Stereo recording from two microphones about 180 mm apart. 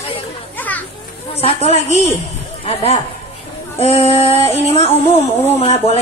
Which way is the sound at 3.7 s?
35° left (ahead or behind).